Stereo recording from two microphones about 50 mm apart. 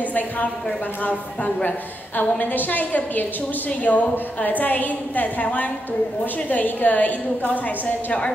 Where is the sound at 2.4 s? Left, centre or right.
Left.